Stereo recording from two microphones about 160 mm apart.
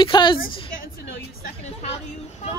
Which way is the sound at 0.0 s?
30° left (ahead or behind).